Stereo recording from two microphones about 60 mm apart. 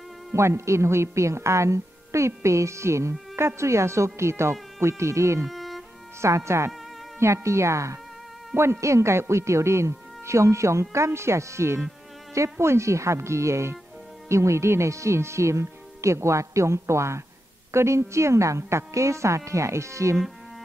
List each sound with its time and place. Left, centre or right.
0.3 s a woman's voice: right
5.5 s music: centre
6.2 s a woman's voice: right